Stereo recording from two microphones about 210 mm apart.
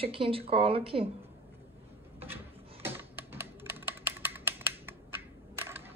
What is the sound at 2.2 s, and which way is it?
Typing, 10° right (ahead or behind).